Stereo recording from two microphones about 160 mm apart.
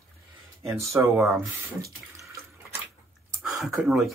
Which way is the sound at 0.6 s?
15° right (ahead or behind).